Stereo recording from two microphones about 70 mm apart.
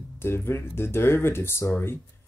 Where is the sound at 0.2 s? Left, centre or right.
Left.